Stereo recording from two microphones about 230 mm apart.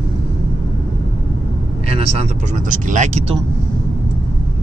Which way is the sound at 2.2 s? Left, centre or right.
Right.